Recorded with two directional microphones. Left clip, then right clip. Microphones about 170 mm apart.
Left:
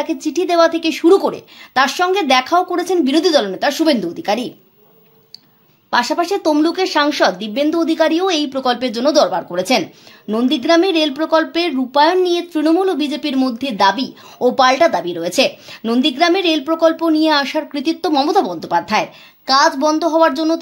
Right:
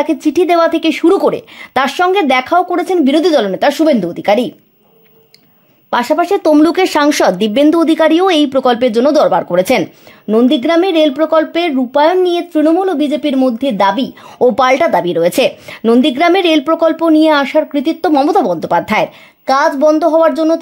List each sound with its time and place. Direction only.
0.0 s speech: 50° right (ahead or behind)
5.9 s speech: 45° right (ahead or behind)
10.2 s speech: 45° right (ahead or behind)